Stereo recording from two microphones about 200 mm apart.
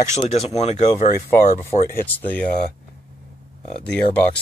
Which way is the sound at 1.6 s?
10° left (ahead or behind).